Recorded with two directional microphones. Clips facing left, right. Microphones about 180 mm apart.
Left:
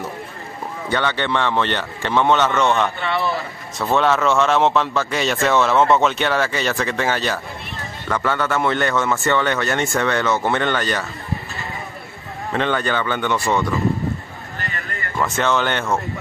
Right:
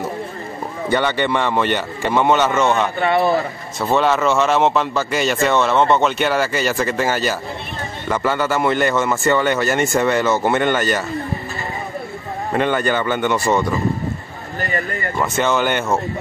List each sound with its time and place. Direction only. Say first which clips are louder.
0.9 s speech: right 3 dB; 10° right (ahead or behind)
3.0 s a man's voice: right 6 dB; 50° right (ahead or behind)
3.8 s speech: right 1 dB; centre (ahead or behind)
12.5 s speech: right 2 dB; 10° right (ahead or behind)
15.1 s speech: right 1 dB; centre (ahead or behind)